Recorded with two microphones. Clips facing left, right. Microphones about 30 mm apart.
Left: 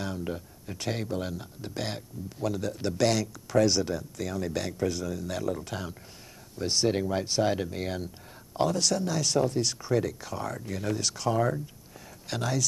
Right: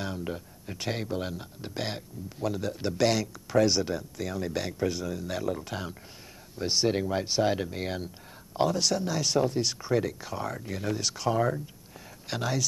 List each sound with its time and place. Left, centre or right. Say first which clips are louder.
0.0 s speech: even; centre